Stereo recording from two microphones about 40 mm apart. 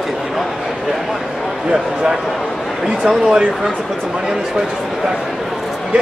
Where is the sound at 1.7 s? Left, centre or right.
Centre.